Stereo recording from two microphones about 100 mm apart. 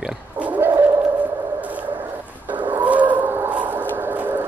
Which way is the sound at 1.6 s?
15° right (ahead or behind).